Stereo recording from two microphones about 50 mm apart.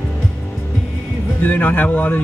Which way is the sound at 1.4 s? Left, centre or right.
Left.